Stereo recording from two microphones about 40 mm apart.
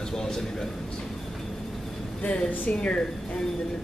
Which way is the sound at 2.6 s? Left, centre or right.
Left.